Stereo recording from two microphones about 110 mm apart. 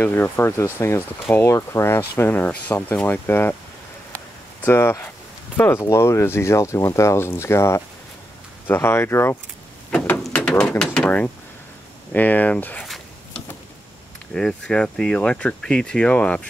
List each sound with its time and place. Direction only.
0.0 s speech: 20° left (ahead or behind)
4.1 s a sound: 15° left (ahead or behind)
5.6 s speech: 20° left (ahead or behind)
9.8 s bird: 10° left (ahead or behind)
10.8 s speech: 5° left (ahead or behind)
12.1 s speech: 15° left (ahead or behind)
14.3 s speech: 5° left (ahead or behind)